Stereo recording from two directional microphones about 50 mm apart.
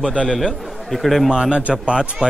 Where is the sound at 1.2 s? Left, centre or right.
Centre.